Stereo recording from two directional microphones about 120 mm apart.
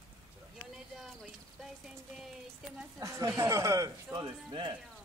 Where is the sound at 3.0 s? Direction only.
25° right (ahead or behind).